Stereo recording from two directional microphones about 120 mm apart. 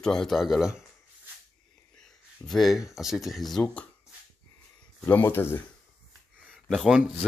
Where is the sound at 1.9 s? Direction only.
5° left (ahead or behind).